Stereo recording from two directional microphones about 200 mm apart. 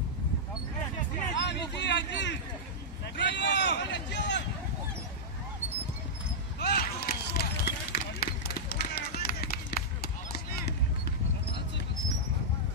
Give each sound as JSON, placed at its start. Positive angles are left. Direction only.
{"t": 1.3, "sound": "a sound", "side_deg": 60}
{"t": 3.2, "sound": "speech", "side_deg": 60}
{"t": 6.6, "sound": "run", "side_deg": 50}